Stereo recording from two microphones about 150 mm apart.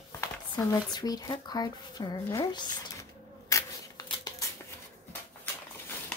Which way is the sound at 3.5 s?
25° left (ahead or behind).